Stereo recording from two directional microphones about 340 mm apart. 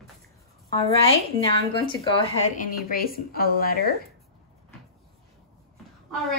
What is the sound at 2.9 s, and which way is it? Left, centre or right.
A woman's voice, left.